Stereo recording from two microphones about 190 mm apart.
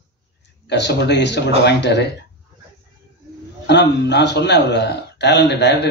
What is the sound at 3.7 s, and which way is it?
A man's voice, 65° left (ahead or behind).